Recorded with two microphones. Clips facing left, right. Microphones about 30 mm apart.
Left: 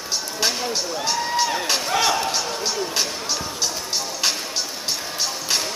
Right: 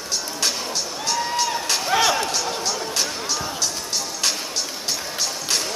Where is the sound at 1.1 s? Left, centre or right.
Centre.